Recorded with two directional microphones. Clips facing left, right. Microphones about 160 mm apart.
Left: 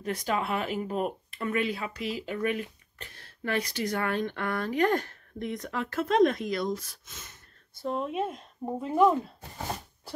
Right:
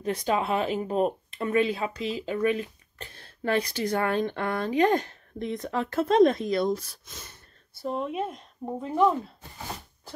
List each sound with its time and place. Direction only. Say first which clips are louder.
0.0 s speech: right 3 dB; 25° right (ahead or behind)
7.8 s speech: even; centre (ahead or behind)